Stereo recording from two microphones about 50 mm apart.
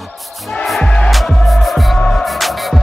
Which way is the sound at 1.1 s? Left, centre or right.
Centre.